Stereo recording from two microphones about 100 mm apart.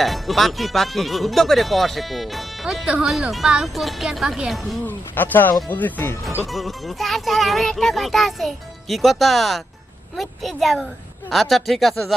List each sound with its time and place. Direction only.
0.0 s speech: centre (ahead or behind)
4.8 s speech: 20° left (ahead or behind)
6.4 s speech: centre (ahead or behind)